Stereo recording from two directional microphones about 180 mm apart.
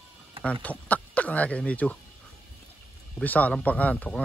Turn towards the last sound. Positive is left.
turn(degrees=5)  # may be behind; listen again after turning